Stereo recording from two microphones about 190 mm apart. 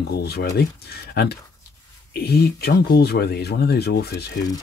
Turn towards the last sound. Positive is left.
turn(degrees=60)  # may be behind; listen again after turning